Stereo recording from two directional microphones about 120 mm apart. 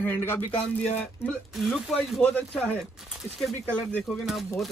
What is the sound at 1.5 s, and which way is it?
A man's voice, centre (ahead or behind).